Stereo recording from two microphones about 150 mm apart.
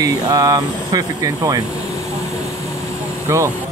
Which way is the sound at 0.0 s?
25° right (ahead or behind).